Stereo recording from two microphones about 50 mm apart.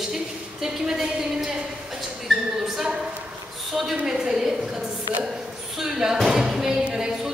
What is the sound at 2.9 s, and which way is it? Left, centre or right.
Speech, right.